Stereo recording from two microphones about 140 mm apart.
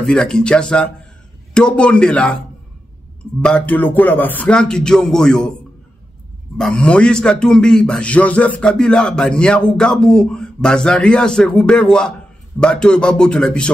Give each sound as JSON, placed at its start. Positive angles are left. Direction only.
{"t": 0.0, "sound": "speech", "side_deg": 5}
{"t": 6.6, "sound": "a man's voice", "side_deg": 5}